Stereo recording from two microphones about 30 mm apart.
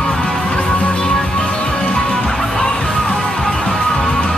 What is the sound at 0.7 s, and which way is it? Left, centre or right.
Music, left.